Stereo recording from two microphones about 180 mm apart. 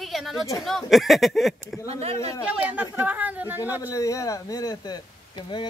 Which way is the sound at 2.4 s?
5° right (ahead or behind).